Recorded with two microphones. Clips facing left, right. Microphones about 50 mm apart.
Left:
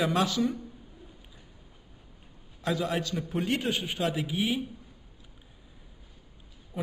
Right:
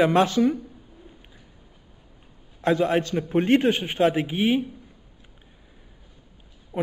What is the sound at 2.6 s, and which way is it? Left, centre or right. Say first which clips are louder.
A man's voice: right 8 dB; right.